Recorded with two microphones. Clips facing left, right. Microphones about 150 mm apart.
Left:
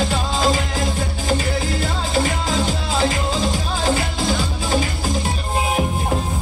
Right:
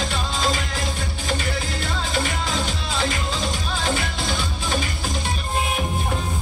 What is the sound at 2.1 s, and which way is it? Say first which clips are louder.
Music: left 6 dB; 35° left (ahead or behind).